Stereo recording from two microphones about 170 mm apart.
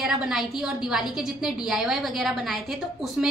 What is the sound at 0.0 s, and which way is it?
A woman's voice, centre (ahead or behind).